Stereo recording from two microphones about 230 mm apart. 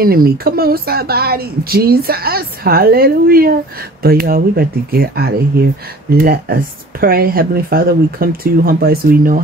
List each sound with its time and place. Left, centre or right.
0.0 s a woman's voice: right